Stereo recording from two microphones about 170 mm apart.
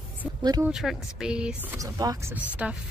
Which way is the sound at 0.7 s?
Centre (ahead or behind).